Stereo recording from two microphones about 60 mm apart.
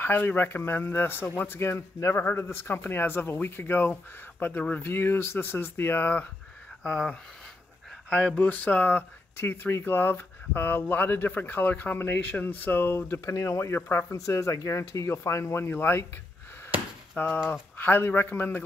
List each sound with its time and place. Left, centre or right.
0.0 s speech: left
6.8 s speech: centre
8.4 s speech: left
14.1 s speech: left
17.2 s speech: left